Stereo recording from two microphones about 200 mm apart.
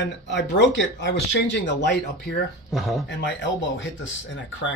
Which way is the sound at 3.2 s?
60° left (ahead or behind).